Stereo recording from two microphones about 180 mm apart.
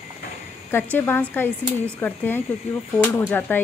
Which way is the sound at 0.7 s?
10° left (ahead or behind).